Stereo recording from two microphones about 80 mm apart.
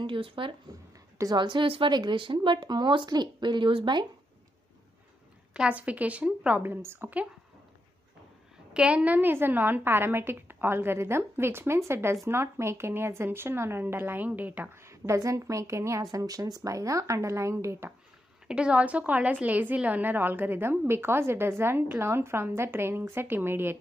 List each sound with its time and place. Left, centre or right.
0.0 s speech: right
5.5 s a woman's voice: centre
6.6 s a woman's voice: right
8.7 s a woman's voice: centre
14.8 s a woman's voice: right
18.5 s a woman's voice: centre; by 23.8 s right